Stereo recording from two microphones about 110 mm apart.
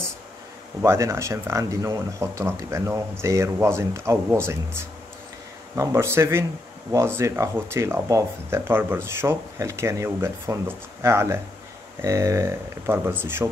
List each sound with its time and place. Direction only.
0.8 s speech: 25° right (ahead or behind)